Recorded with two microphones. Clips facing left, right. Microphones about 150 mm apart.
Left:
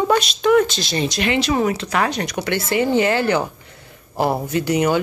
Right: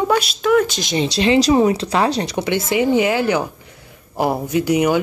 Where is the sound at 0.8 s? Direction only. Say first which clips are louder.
Right 2 dB; 15° right (ahead or behind).